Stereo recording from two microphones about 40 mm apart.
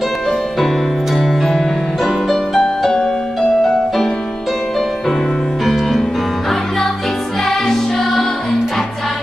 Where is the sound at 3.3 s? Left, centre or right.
Centre.